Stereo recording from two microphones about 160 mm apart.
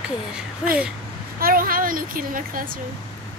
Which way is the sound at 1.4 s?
60° right (ahead or behind).